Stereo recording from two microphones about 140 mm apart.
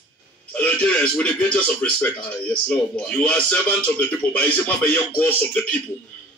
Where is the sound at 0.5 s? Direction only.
10° left (ahead or behind).